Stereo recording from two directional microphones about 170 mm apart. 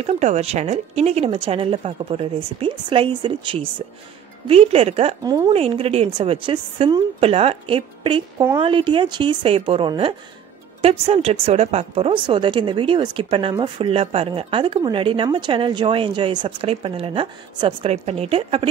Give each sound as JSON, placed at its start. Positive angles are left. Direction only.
{"t": 0.0, "sound": "speech", "side_deg": -40}
{"t": 5.2, "sound": "speech", "side_deg": -25}
{"t": 5.5, "sound": "speech", "side_deg": -35}